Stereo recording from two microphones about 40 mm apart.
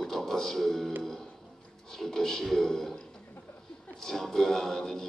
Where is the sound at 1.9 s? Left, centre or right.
Centre.